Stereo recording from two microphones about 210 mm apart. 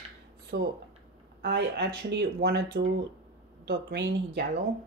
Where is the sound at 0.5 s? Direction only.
40° right (ahead or behind).